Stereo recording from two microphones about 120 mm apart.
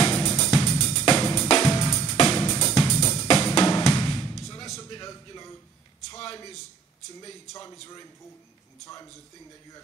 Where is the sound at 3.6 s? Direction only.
35° left (ahead or behind).